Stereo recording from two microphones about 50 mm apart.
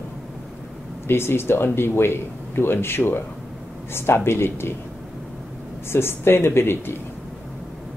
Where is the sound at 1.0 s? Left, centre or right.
Left.